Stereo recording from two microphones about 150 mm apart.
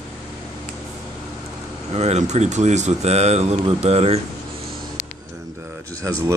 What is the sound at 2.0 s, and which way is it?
Speech, 50° right (ahead or behind).